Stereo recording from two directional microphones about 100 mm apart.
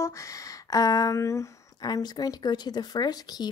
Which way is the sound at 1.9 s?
40° left (ahead or behind).